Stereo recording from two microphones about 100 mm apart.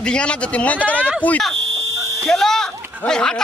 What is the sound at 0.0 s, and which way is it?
Speech, 10° left (ahead or behind).